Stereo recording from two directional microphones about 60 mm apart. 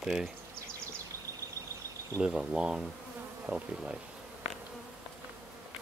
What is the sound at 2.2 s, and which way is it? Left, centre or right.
Speech, centre.